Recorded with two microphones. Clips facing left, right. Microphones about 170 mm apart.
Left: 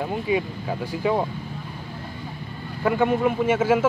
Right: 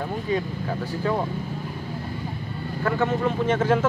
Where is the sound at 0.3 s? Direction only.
10° left (ahead or behind).